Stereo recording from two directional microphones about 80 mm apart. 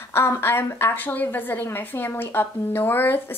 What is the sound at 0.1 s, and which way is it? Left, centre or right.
A woman's voice, left.